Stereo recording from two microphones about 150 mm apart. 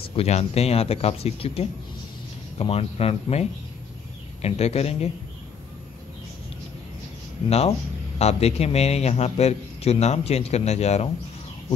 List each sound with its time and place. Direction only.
0.1 s a man's voice: 45° left (ahead or behind)
7.4 s a man's voice: 45° left (ahead or behind)